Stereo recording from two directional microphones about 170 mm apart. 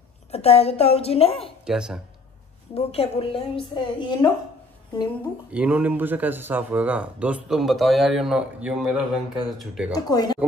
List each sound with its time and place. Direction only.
0.3 s a woman's voice: 35° left (ahead or behind)
1.6 s speech: 5° right (ahead or behind)
2.7 s a woman's voice: 40° left (ahead or behind)
5.5 s speech: 10° right (ahead or behind)
9.9 s speech: 25° left (ahead or behind)